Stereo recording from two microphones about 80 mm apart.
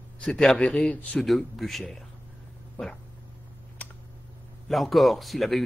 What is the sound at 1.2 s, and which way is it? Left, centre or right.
Speech, centre.